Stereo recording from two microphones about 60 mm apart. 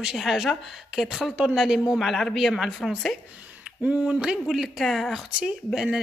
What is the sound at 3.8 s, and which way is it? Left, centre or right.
Speech, centre.